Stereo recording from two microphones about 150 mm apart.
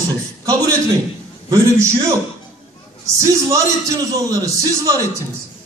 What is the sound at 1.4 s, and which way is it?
Speech, 20° right (ahead or behind).